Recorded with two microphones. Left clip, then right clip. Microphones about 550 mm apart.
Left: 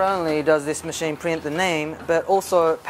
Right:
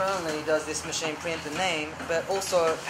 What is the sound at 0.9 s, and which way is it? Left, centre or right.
Speech, left.